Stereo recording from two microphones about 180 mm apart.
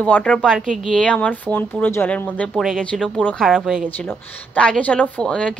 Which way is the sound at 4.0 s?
10° left (ahead or behind).